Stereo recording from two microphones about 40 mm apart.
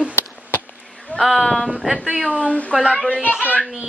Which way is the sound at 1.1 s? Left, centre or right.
Centre.